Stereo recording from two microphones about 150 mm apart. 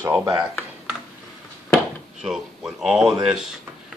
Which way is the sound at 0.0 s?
20° right (ahead or behind).